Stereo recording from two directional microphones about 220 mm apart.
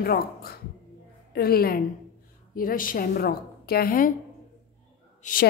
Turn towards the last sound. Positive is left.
turn(degrees=35)  # may be behind; listen again after turning